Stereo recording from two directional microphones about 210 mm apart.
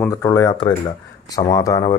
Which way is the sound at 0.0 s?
15° left (ahead or behind).